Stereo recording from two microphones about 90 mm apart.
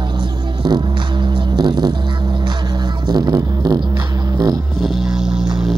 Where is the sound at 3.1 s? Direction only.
45° right (ahead or behind).